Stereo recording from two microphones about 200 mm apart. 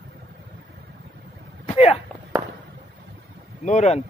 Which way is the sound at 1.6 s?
30° left (ahead or behind).